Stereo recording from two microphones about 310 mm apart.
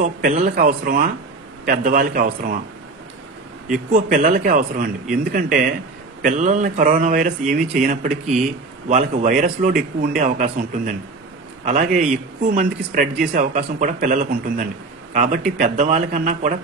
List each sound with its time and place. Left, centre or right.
0.0 s a man's voice: right
3.9 s a man's voice: right